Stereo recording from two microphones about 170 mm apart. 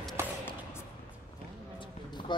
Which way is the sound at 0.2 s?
15° right (ahead or behind).